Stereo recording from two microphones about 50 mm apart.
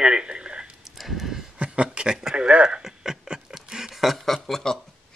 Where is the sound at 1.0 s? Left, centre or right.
Centre.